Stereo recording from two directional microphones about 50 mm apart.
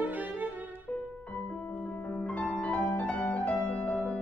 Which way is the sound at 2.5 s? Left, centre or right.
Left.